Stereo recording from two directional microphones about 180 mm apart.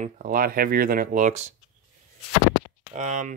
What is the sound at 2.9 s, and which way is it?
Speech, 45° right (ahead or behind).